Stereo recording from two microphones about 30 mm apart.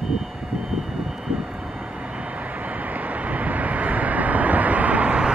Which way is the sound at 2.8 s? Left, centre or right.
Right.